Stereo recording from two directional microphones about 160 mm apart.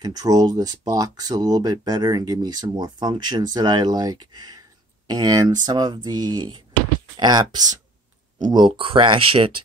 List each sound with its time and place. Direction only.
0.0 s speech: 25° right (ahead or behind)